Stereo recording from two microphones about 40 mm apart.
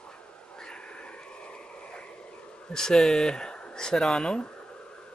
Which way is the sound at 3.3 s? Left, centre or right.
Left.